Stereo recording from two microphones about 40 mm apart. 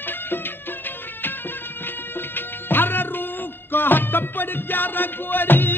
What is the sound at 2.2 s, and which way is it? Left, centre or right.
Music, left.